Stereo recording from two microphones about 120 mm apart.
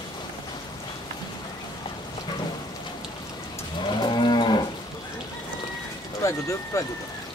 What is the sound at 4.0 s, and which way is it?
Moo, 40° left (ahead or behind).